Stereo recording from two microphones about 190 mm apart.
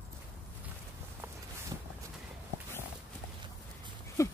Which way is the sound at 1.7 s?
20° right (ahead or behind).